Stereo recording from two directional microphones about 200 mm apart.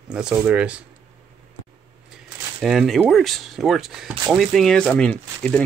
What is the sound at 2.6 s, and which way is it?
Speech, centre (ahead or behind).